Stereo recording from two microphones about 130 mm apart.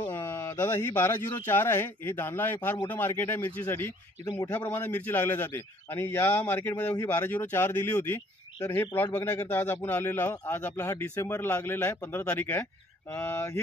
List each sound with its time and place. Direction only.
0.0 s speech: 15° left (ahead or behind)